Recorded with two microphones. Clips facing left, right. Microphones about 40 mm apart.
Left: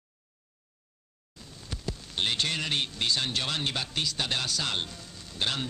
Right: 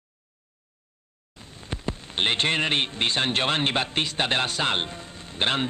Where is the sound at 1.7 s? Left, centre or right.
Right.